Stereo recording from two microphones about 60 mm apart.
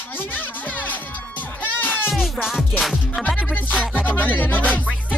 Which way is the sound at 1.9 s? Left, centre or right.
Centre.